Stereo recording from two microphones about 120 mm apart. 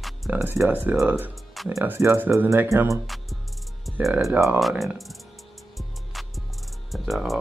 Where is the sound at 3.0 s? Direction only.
Centre (ahead or behind).